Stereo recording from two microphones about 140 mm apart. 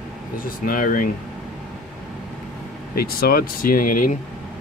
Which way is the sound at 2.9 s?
90° left.